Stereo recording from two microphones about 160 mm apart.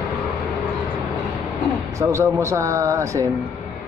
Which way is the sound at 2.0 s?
20° right (ahead or behind).